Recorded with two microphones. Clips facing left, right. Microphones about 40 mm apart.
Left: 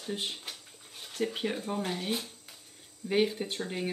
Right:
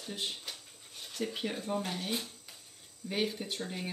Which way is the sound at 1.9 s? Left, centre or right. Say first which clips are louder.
Left 3 dB; left.